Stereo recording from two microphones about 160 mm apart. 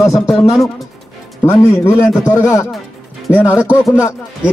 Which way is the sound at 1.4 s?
15° left (ahead or behind).